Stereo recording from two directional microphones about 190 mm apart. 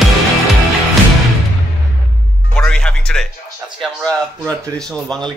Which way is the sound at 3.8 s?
5° left (ahead or behind).